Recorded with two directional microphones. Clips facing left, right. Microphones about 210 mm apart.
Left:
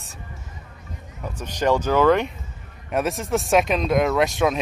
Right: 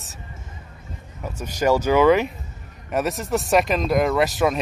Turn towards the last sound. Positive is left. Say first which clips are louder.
# even
turn(degrees=0)  # may be behind; listen again after turning